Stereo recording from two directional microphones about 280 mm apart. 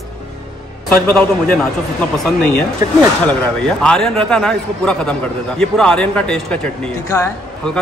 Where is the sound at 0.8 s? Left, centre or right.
Centre.